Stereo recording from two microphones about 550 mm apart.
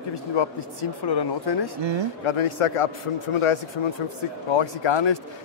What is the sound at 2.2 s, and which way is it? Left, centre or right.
Speech, left.